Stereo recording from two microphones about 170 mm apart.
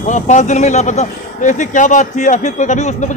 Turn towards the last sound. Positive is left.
turn(degrees=45)  # may be behind; listen again after turning